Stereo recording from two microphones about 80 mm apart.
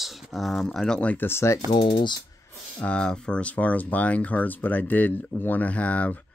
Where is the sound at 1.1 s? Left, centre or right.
Left.